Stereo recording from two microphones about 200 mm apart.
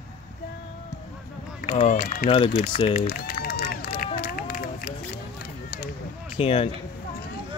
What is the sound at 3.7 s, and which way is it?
Run, 45° left (ahead or behind).